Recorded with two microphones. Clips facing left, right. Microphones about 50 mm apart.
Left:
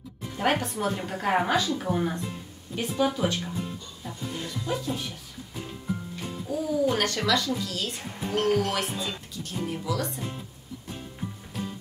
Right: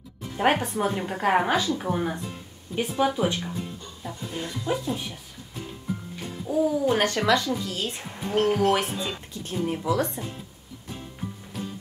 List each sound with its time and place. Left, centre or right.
0.4 s speech: right
6.4 s speech: centre
9.3 s speech: right